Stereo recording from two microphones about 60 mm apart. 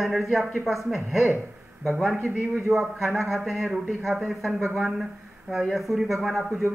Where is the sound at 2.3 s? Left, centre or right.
Right.